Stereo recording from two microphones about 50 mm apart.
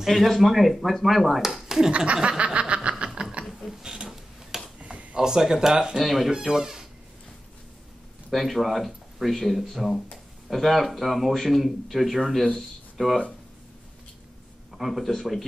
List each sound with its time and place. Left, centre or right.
0.0 s speech: centre
1.9 s snicker: right
3.2 s a sound: centre
4.7 s a sound: right
5.2 s speech: centre
8.3 s speech: centre
14.7 s speech: centre